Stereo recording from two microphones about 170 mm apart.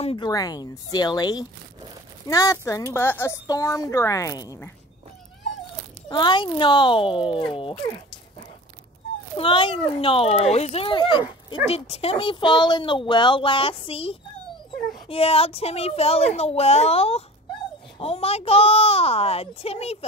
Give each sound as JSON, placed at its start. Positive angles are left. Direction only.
{"t": 0.0, "sound": "speech", "side_deg": 30}
{"t": 6.0, "sound": "speech", "side_deg": 25}
{"t": 9.4, "sound": "speech", "side_deg": 30}